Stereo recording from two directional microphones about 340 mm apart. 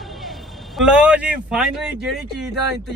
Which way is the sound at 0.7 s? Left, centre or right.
Centre.